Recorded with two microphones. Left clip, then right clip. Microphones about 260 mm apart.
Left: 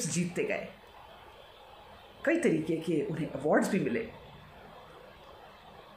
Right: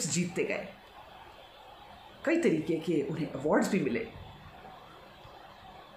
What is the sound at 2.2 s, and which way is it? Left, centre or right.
Speech, centre.